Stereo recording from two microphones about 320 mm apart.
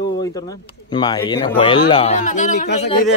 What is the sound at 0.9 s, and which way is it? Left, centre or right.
Speech, centre.